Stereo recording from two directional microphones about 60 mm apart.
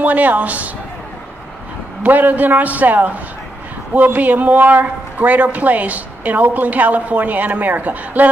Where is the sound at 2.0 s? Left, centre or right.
Right.